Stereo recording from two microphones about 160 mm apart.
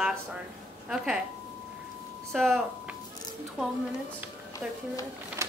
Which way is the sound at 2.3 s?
Centre (ahead or behind).